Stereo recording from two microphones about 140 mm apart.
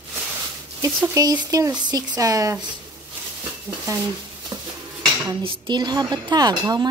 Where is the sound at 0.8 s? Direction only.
20° right (ahead or behind).